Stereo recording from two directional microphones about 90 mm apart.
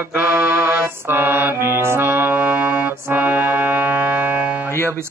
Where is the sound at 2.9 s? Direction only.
20° right (ahead or behind).